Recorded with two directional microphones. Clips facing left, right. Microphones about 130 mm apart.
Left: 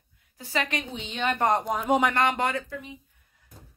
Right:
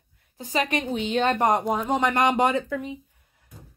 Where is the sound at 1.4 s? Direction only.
10° right (ahead or behind).